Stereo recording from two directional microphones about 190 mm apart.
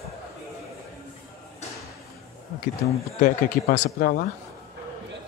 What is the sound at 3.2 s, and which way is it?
Speech, 45° left (ahead or behind).